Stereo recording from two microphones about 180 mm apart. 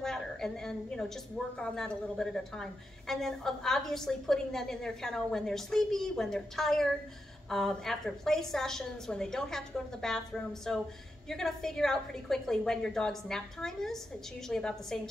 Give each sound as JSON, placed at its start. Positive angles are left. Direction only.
{"t": 0.0, "sound": "a woman's voice", "side_deg": 5}